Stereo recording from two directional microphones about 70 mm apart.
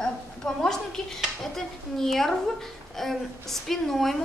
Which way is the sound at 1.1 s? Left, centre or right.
Centre.